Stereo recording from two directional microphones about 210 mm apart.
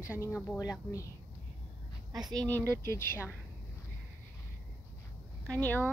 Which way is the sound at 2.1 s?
20° right (ahead or behind).